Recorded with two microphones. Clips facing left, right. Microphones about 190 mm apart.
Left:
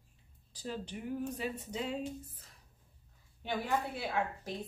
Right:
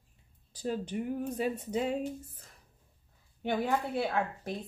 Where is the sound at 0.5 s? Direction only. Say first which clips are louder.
Right 7 dB; 50° right (ahead or behind).